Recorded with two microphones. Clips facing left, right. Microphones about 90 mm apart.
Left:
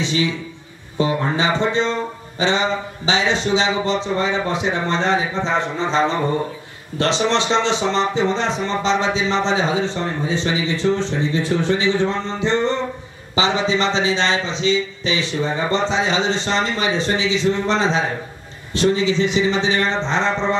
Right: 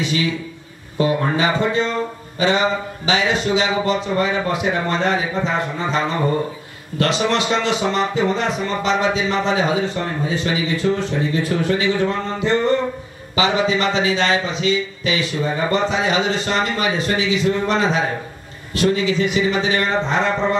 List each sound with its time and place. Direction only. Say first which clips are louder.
0.0 s speech: even; 25° left (ahead or behind)
2.3 s music: right 1 dB; 25° left (ahead or behind)
3.1 s speech: even; 25° left (ahead or behind)